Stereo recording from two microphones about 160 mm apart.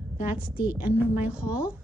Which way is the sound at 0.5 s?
10° right (ahead or behind).